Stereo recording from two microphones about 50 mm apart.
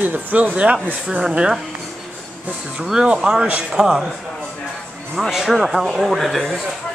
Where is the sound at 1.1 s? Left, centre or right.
Centre.